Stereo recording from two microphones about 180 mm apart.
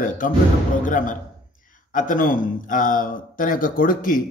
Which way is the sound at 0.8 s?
45° left (ahead or behind).